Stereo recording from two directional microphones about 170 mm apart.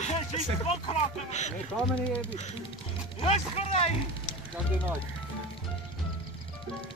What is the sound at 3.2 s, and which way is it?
Speech, 40° left (ahead or behind).